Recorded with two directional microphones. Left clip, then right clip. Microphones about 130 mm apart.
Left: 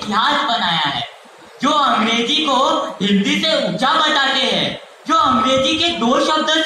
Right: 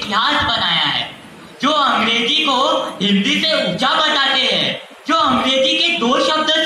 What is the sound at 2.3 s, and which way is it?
Music, 50° left (ahead or behind).